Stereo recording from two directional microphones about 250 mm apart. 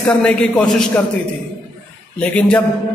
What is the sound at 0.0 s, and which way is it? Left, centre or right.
A man's voice, centre.